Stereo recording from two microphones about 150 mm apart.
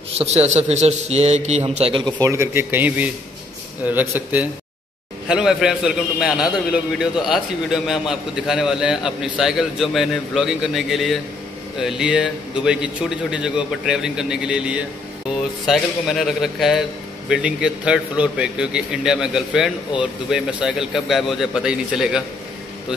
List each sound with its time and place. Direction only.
0.2 s a man's voice: 45° right (ahead or behind)
2.1 s a man's voice: 20° right (ahead or behind); by 22.2 s 5° right (ahead or behind)